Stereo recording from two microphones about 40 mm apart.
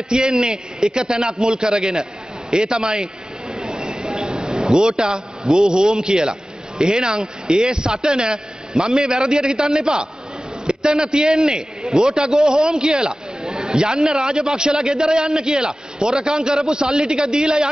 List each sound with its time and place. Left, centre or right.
0.1 s a man's voice: centre
3.5 s a sound: centre
5.5 s a man's voice: centre